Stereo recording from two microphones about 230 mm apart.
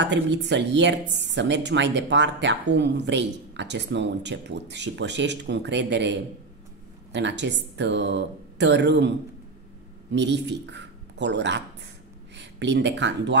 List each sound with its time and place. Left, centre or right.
0.0 s speech: right
10.1 s speech: right